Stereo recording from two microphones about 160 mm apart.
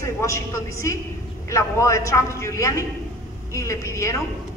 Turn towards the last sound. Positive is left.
turn(degrees=20)  # may be behind; listen again after turning